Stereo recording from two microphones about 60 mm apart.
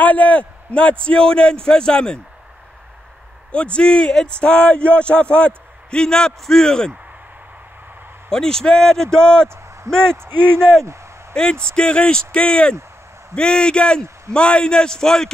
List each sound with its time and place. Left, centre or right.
0.0 s speech: left
3.5 s speech: centre
8.3 s speech: centre